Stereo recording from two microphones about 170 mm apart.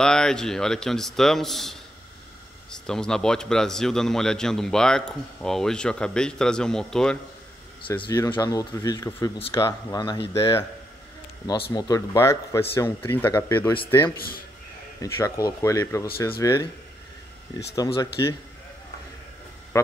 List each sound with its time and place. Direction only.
0.0 s speech: 5° left (ahead or behind)
7.9 s speech: 15° left (ahead or behind)
11.7 s speech: 20° left (ahead or behind)
14.1 s a man's voice: 60° left (ahead or behind)
15.0 s speech: 20° left (ahead or behind)
17.7 s speech: 20° left (ahead or behind)